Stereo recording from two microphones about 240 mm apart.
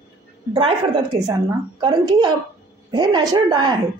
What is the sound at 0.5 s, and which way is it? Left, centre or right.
Speech, right.